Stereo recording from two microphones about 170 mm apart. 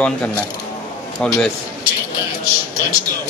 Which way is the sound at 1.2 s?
5° left (ahead or behind).